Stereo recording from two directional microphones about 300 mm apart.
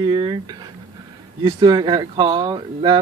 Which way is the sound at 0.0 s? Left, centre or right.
Centre.